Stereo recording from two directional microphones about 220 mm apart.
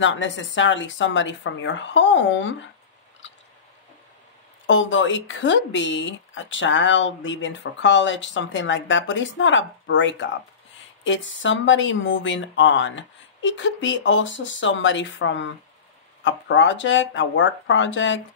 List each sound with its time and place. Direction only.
0.0 s speech: 60° left (ahead or behind)
4.6 s speech: 60° left (ahead or behind)